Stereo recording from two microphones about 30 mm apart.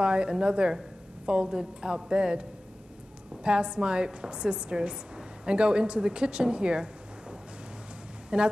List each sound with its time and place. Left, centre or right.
0.0 s a woman's voice: right
3.4 s a woman's voice: right